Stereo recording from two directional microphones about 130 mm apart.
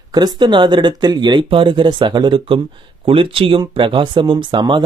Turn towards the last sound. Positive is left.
turn(degrees=-35)  # may be behind; listen again after turning